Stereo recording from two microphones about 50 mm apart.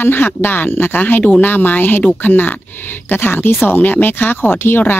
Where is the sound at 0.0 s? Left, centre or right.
Left.